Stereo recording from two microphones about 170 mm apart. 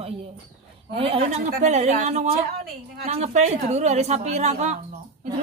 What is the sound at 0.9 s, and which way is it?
A woman's voice, 35° right (ahead or behind).